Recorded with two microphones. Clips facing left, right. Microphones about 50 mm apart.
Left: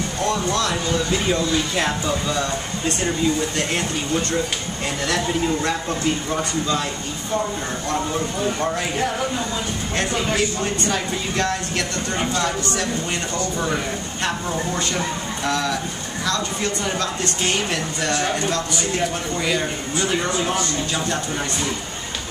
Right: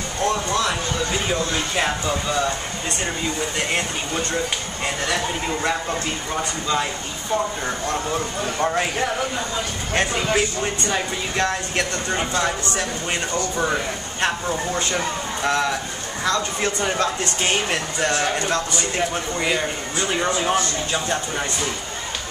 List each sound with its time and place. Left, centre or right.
0.3 s a sound: centre
1.8 s speech: centre
3.5 s speech: centre
9.9 s speech: right
15.4 s speech: right